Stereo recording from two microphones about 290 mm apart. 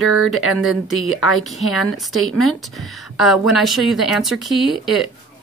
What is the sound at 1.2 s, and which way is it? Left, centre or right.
Speech, centre.